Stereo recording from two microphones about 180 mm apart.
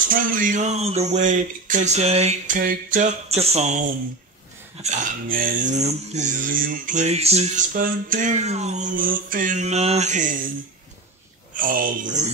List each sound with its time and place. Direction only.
0.1 s a sound: 50° right (ahead or behind)
4.8 s mantra: 45° right (ahead or behind)
11.5 s mantra: 50° right (ahead or behind)